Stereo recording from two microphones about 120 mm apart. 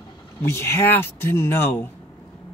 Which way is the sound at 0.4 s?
20° left (ahead or behind).